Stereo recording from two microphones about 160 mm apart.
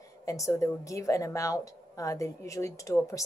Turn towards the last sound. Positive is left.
turn(degrees=20)  # may be behind; listen again after turning